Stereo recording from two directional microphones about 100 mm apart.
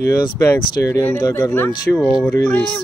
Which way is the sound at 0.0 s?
30° left (ahead or behind).